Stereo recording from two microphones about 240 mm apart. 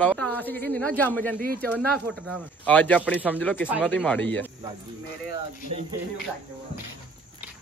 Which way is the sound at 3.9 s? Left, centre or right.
Centre.